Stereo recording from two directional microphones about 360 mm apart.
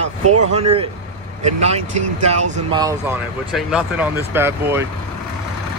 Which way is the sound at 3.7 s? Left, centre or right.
Centre.